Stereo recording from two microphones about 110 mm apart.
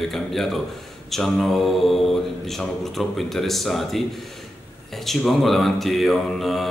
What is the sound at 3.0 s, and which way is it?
A man's voice, centre (ahead or behind).